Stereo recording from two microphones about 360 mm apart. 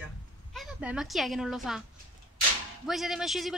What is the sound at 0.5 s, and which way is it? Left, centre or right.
Speech, centre.